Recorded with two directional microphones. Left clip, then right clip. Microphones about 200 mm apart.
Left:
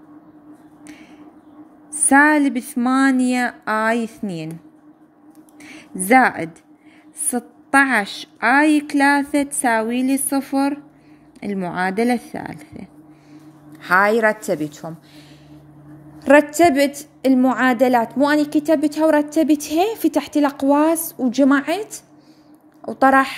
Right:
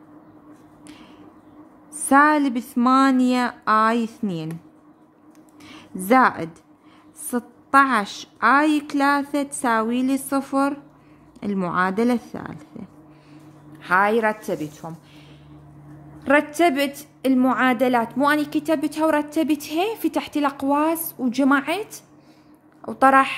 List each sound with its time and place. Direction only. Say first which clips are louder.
2.0 s a woman's voice: left 2 dB; 10° left (ahead or behind)
5.6 s a sound: left 4 dB; 10° left (ahead or behind)
7.2 s a woman's voice: left 2 dB; 10° left (ahead or behind)
16.2 s a woman's voice: left 5 dB; 20° left (ahead or behind)